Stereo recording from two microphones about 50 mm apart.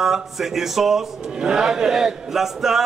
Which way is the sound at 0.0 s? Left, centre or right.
Centre.